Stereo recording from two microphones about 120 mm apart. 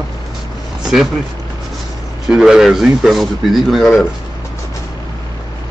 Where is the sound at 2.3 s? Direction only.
5° right (ahead or behind).